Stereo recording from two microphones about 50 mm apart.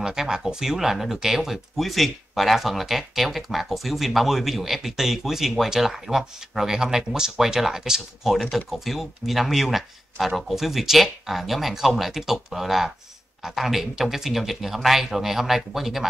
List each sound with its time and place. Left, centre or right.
0.0 s speech: centre